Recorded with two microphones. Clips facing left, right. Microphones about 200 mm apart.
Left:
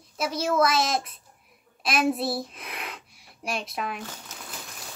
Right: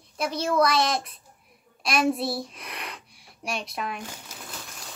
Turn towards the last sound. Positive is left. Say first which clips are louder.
# left 1 dB
turn(degrees=0)  # may be behind; listen again after turning